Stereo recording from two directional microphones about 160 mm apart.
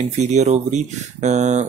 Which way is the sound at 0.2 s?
45° right (ahead or behind).